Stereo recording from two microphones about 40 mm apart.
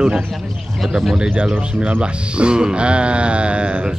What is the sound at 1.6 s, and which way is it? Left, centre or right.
Speech, right.